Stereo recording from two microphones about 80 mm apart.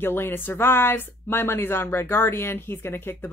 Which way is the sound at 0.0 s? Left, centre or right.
Left.